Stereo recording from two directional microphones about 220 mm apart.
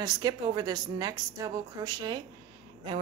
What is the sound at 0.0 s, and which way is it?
A woman's voice, 20° right (ahead or behind).